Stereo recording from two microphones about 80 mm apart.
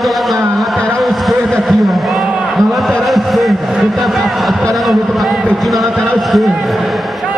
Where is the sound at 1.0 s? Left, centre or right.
Centre.